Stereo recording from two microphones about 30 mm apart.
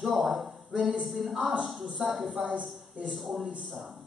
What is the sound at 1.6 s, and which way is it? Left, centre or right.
Speech, centre.